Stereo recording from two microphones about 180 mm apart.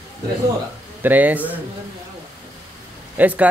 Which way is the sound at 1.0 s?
10° right (ahead or behind).